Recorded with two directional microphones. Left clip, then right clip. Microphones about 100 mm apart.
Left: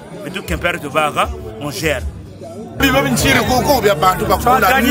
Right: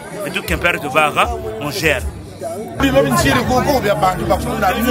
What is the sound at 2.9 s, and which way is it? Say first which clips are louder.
A man's voice: right 1 dB; 15° left (ahead or behind).